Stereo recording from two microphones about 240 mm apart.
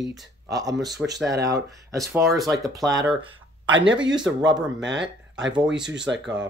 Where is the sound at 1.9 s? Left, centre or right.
Centre.